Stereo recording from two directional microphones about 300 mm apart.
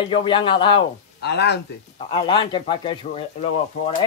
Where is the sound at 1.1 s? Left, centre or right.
Left.